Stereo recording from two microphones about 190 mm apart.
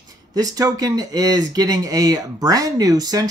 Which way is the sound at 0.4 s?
20° right (ahead or behind).